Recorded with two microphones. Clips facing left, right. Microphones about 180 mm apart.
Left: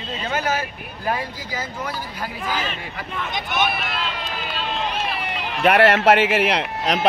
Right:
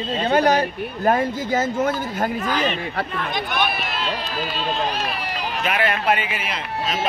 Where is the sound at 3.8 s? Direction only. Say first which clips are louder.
Even; 25° right (ahead or behind).